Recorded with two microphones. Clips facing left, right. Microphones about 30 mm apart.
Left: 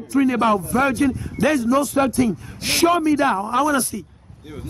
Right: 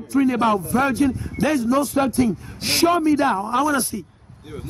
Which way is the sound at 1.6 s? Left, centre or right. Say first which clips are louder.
Right 1 dB; left.